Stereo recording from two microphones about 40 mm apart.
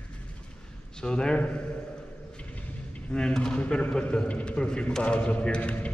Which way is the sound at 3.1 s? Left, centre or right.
Centre.